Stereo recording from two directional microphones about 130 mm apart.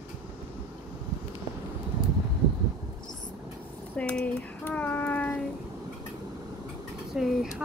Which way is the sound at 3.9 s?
10° left (ahead or behind).